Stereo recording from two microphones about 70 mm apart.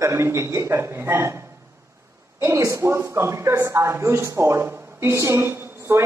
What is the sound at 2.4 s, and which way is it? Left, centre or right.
A woman's voice, right.